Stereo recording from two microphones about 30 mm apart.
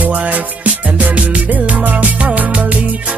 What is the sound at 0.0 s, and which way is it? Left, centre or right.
Music, right.